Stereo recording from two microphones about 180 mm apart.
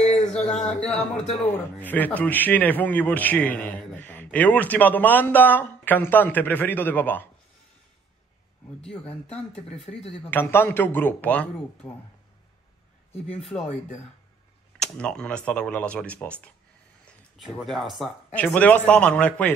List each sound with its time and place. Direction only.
0.0 s a sound: 40° left (ahead or behind)
0.3 s a sound: 5° left (ahead or behind)
0.9 s speech: 35° left (ahead or behind)
1.4 s a man's voice: 10° left (ahead or behind)
9.0 s speech: 35° left (ahead or behind)
10.3 s a man's voice: 10° left (ahead or behind)
13.4 s speech: centre (ahead or behind)
14.8 s a man's voice: 5° left (ahead or behind)